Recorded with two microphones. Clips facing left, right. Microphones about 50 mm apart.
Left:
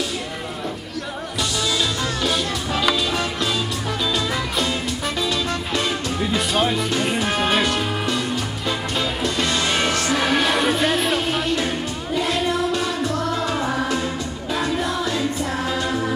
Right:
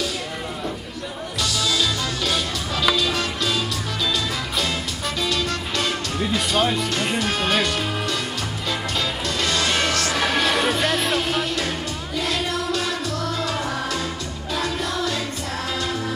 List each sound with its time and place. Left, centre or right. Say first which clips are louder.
1.4 s music: even; centre
6.1 s music: even; centre
6.5 s speech: even; centre
9.2 s music: left 1 dB; centre